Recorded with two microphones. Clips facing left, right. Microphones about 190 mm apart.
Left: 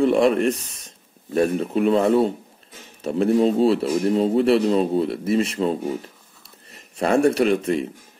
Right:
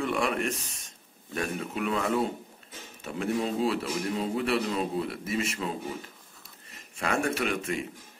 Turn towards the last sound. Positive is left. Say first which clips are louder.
# left 11 dB
turn(degrees=35)  # may be behind; listen again after turning